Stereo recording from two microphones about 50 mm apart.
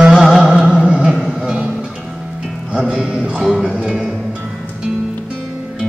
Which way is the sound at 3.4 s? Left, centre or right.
Centre.